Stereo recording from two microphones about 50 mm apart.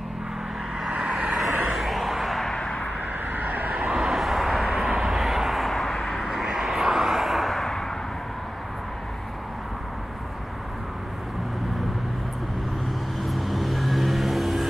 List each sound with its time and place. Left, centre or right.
0.8 s vehicle: centre
3.3 s vehicle: right
3.8 s vehicle: centre
4.3 s vehicle: centre
13.2 s vehicle: centre